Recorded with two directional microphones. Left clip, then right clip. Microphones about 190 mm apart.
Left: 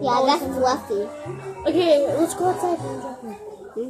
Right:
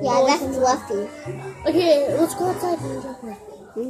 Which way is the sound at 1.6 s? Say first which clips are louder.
Even; 10° left (ahead or behind).